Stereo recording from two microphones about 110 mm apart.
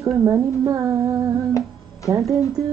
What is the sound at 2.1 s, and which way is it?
Speech, 25° right (ahead or behind).